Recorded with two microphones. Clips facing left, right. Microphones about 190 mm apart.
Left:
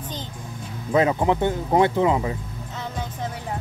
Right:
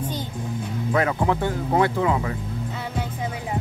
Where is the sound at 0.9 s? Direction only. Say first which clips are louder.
Left 3 dB; 20° left (ahead or behind).